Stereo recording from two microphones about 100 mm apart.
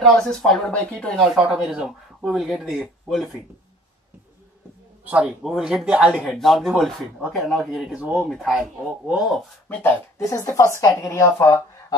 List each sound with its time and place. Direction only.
0.0 s speech: 5° left (ahead or behind)
1.2 s speech: 5° right (ahead or behind)
5.0 s a man's voice: 15° right (ahead or behind)
6.2 s speech: 5° left (ahead or behind)
9.7 s speech: 20° left (ahead or behind)
10.2 s a woman's voice: 30° left (ahead or behind)